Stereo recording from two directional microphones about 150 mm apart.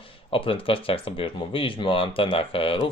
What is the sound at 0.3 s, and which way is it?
Speech, 35° left (ahead or behind).